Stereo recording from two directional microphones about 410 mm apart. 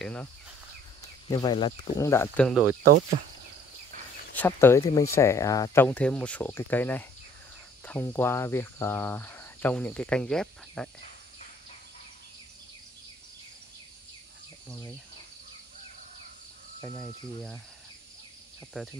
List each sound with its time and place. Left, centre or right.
0.0 s insect: centre
1.2 s speech: centre
4.4 s speech: centre
18.8 s speech: centre